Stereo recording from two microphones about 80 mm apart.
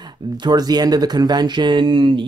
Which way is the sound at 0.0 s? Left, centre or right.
Right.